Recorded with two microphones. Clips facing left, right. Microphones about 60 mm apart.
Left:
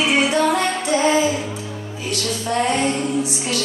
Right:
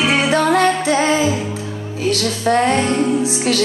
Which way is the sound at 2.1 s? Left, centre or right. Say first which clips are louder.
Right 6 dB; right.